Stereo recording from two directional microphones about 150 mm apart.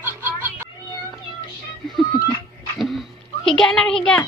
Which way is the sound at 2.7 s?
Centre (ahead or behind).